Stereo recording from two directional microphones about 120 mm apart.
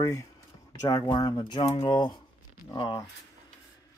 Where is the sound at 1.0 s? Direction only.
40° left (ahead or behind).